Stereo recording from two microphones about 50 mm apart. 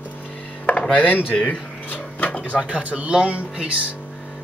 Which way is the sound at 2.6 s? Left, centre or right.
Right.